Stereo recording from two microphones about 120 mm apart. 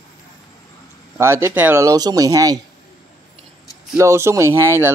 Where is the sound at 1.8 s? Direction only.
30° right (ahead or behind).